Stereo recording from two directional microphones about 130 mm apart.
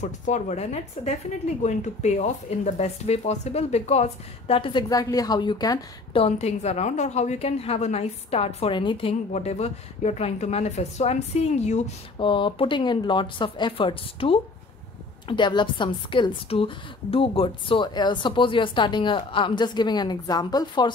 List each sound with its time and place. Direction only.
0.0 s speech: 65° left (ahead or behind); by 4.8 s 40° left (ahead or behind)
4.8 s a woman's voice: 30° left (ahead or behind)
6.1 s speech: 55° left (ahead or behind)
12.2 s a woman's voice: 40° left (ahead or behind)